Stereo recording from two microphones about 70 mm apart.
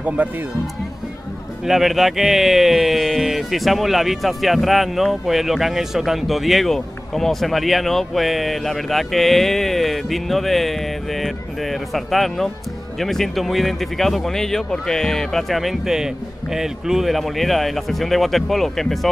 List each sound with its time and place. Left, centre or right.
0.0 s speech: right
1.7 s speech: centre